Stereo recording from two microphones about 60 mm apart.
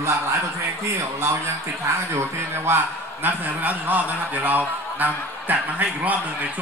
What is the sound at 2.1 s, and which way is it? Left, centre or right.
Speech, right.